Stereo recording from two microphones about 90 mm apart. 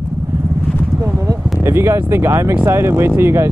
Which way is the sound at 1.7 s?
25° right (ahead or behind).